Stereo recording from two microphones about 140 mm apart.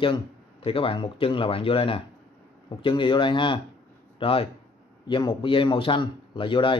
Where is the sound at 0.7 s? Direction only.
40° left (ahead or behind).